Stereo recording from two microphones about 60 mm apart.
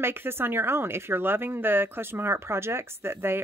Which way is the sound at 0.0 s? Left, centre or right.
Right.